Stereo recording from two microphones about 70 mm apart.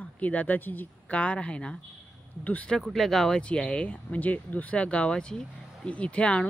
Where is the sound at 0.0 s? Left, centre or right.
Left.